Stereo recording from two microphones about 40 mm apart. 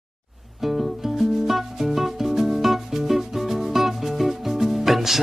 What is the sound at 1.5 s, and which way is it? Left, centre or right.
Music, centre.